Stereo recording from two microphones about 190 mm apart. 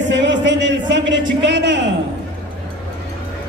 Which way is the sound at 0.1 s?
70° right (ahead or behind).